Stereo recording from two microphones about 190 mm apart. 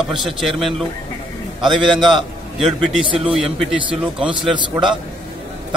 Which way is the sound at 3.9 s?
5° right (ahead or behind).